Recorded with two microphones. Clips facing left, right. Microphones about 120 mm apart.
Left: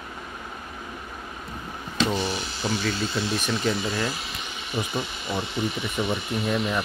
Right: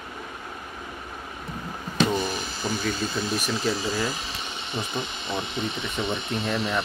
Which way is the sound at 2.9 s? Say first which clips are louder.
Left 1 dB; 45° right (ahead or behind).